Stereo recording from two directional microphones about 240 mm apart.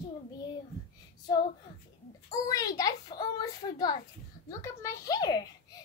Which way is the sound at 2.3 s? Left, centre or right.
Centre.